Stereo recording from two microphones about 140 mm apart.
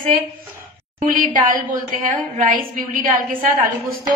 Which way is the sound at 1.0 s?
75° right (ahead or behind).